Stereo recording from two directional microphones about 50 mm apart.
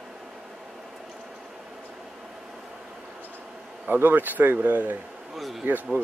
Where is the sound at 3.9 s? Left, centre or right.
Right.